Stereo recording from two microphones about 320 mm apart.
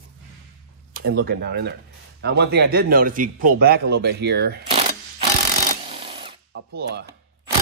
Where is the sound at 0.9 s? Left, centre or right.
Right.